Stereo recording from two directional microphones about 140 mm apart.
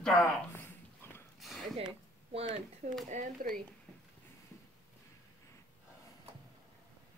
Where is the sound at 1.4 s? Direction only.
Centre (ahead or behind).